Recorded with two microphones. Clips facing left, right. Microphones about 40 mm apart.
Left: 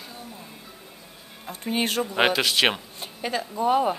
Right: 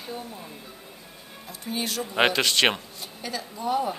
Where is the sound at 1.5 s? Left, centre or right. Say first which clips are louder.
Left 5 dB; left.